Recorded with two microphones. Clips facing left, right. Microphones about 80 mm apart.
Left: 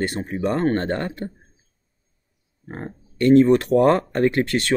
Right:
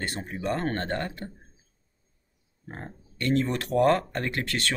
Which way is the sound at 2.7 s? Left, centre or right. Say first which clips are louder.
Left 7 dB; left.